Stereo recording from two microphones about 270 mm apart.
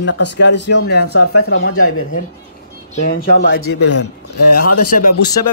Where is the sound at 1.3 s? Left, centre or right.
Left.